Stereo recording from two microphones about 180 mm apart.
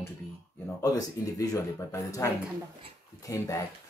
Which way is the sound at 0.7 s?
20° left (ahead or behind).